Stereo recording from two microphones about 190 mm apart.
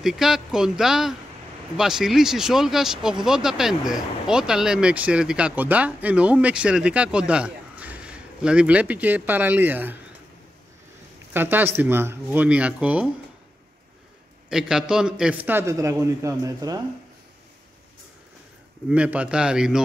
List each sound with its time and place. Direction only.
0.0 s speech: centre (ahead or behind)
11.3 s a man's voice: 10° right (ahead or behind)
14.5 s a man's voice: 5° right (ahead or behind)
18.9 s speech: 5° right (ahead or behind)